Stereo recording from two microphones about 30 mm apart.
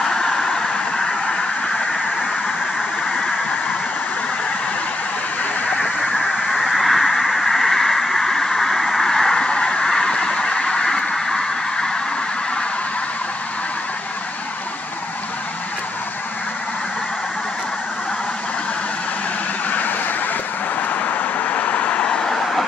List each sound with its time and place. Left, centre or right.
0.0 s vehicle: centre
6.2 s duck: centre
9.1 s a sound: left
9.5 s a sound: left
9.8 s honk: left
21.5 s vehicle: left
22.0 s vehicle: left